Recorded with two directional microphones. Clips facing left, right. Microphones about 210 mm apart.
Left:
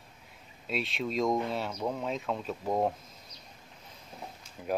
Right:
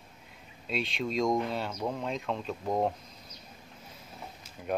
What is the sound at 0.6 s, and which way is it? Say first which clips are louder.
Speech: right 1 dB; centre (ahead or behind).